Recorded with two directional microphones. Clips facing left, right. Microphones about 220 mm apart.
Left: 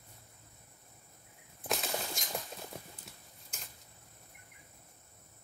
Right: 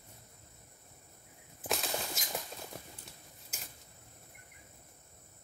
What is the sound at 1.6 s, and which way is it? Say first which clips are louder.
Bird flight: even; centre (ahead or behind).